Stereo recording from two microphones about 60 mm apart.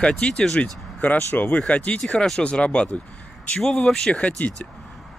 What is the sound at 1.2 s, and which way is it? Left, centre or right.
Speech, left.